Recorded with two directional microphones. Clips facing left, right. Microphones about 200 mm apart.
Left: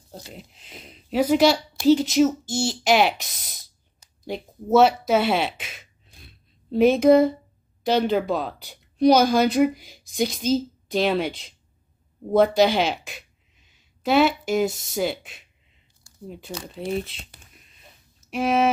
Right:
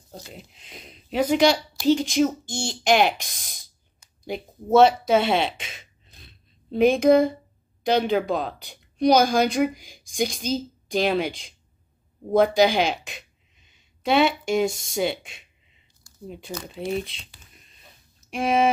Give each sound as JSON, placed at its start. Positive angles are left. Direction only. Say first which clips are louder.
{"t": 0.1, "sound": "speech", "louder": "left 1 dB", "side_deg": 0}
{"t": 4.0, "sound": "a sound", "louder": "left 2 dB", "side_deg": 40}
{"t": 4.7, "sound": "speech", "louder": "right 1 dB", "side_deg": 5}
{"t": 18.3, "sound": "speech", "louder": "even", "side_deg": 5}